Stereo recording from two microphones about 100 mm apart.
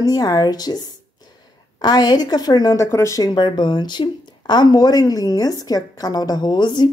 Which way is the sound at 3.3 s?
45° left (ahead or behind).